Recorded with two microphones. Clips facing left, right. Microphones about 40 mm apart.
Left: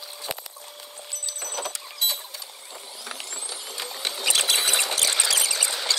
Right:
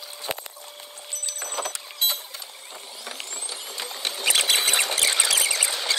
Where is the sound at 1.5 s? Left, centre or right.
Right.